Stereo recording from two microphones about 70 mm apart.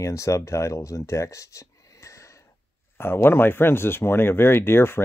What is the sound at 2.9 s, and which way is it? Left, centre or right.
Speech, left.